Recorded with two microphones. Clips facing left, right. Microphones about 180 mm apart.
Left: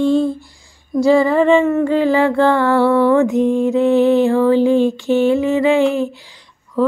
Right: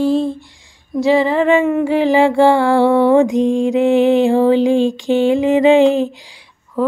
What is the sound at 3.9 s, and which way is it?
Music, 15° right (ahead or behind).